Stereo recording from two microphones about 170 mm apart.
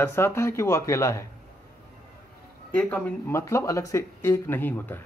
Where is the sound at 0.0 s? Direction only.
15° left (ahead or behind).